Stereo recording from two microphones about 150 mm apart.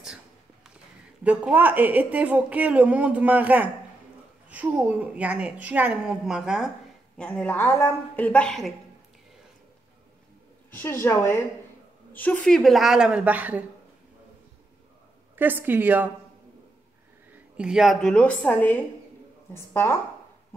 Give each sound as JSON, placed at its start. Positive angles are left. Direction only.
{"t": 1.2, "sound": "a woman's voice", "side_deg": -10}
{"t": 7.2, "sound": "speech", "side_deg": 10}
{"t": 10.7, "sound": "a woman's voice", "side_deg": 15}
{"t": 15.3, "sound": "a woman's voice", "side_deg": -10}
{"t": 17.6, "sound": "speech", "side_deg": -5}